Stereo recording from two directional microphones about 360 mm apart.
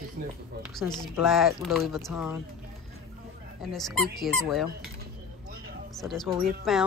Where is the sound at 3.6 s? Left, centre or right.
Centre.